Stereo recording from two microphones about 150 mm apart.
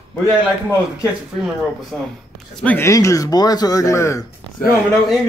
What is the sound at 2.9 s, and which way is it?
Speech, 20° left (ahead or behind).